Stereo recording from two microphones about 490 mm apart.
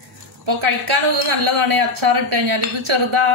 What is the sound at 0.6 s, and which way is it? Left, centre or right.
A woman's voice, right.